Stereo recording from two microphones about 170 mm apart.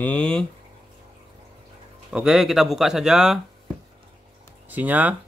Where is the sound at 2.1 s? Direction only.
5° right (ahead or behind).